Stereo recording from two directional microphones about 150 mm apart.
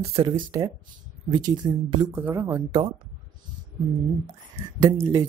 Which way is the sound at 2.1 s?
15° right (ahead or behind).